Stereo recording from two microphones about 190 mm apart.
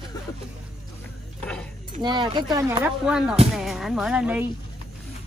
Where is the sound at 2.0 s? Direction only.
25° right (ahead or behind); by 4.4 s 5° right (ahead or behind).